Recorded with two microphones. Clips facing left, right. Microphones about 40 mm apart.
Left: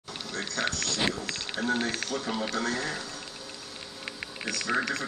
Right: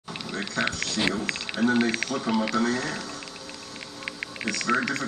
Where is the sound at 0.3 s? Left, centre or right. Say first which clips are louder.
Right 3 dB; centre.